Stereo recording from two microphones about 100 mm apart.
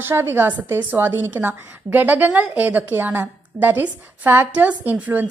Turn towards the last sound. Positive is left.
turn(degrees=-15)  # may be behind; listen again after turning